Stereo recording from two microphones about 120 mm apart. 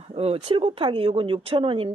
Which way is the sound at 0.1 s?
55° right (ahead or behind).